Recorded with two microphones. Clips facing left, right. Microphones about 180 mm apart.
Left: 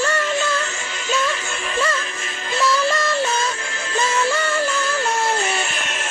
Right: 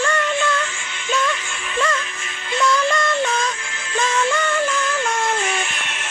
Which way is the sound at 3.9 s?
35° left (ahead or behind).